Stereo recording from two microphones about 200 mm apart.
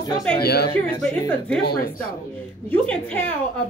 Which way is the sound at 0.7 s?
10° left (ahead or behind).